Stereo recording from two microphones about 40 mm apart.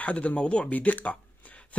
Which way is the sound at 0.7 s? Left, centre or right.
Left.